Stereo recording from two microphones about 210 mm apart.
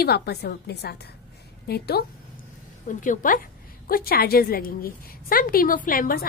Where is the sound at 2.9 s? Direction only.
40° left (ahead or behind).